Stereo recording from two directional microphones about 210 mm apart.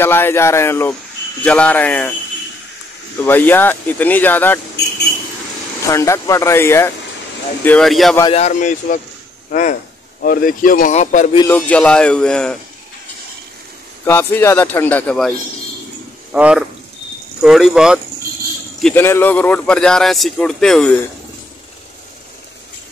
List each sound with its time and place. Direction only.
0.0 s speech: 10° left (ahead or behind)
3.3 s speech: 10° left (ahead or behind)
5.8 s speech: 15° left (ahead or behind)
8.2 s speech: 30° left (ahead or behind)
11.3 s speech: 10° left (ahead or behind)
14.0 s speech: 10° left (ahead or behind)
16.3 s speech: 5° right (ahead or behind)